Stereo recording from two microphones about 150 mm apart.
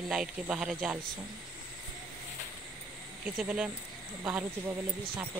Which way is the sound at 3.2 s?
5° right (ahead or behind).